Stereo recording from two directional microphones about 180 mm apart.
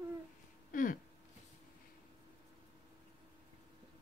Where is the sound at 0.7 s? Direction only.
50° left (ahead or behind).